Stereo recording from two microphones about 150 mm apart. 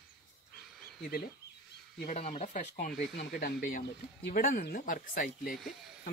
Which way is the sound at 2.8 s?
70° left (ahead or behind).